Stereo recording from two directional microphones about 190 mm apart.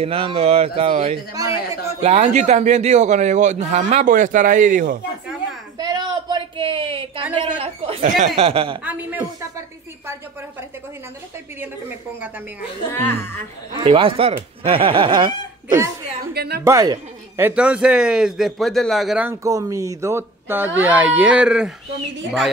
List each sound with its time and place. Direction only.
0.0 s a man's voice: 30° right (ahead or behind)
1.3 s speech: 20° right (ahead or behind)
2.0 s a man's voice: 35° right (ahead or behind)
5.8 s a sound: 20° right (ahead or behind)
7.3 s a man's voice: 30° right (ahead or behind)
8.8 s speech: 10° right (ahead or behind)
12.9 s speech: 10° left (ahead or behind)
13.8 s speech: 30° right (ahead or behind)
16.2 s a woman's voice: 55° right (ahead or behind)
16.6 s speech: 20° right (ahead or behind)
19.4 s speech: 15° right (ahead or behind)